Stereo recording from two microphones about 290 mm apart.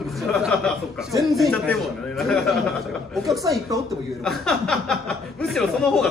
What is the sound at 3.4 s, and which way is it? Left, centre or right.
Speech, centre.